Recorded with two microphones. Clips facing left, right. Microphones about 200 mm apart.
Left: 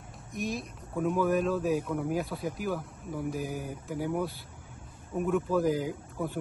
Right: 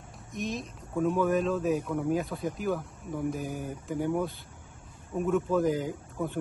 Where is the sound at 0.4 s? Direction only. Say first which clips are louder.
Even; 10° left (ahead or behind).